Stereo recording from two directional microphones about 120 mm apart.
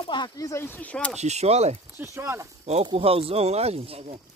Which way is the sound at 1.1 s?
65° right (ahead or behind).